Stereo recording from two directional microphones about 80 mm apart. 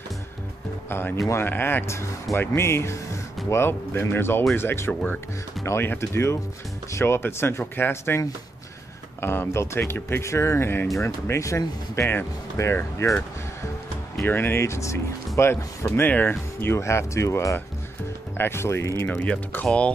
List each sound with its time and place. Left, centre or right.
0.8 s speech: left
9.2 s speech: left
14.2 s speech: left
16.1 s speech: left
19.0 s speech: centre